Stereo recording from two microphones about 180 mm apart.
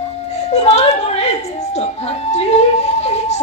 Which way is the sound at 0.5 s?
40° left (ahead or behind).